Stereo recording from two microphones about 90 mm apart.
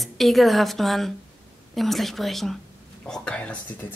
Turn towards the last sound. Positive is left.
turn(degrees=15)  # may be behind; listen again after turning